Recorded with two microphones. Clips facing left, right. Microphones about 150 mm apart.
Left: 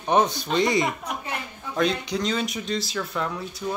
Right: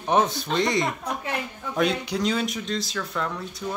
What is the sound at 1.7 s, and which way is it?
Speech, 5° right (ahead or behind).